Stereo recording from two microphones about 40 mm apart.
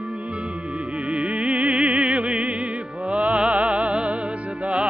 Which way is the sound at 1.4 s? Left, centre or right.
Right.